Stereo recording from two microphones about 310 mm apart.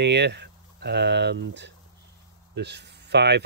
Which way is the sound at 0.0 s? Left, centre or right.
Right.